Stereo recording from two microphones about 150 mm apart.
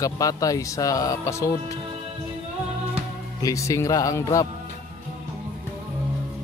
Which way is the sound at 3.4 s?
20° left (ahead or behind).